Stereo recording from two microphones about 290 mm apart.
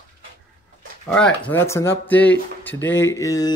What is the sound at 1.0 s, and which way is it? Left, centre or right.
Speech, centre.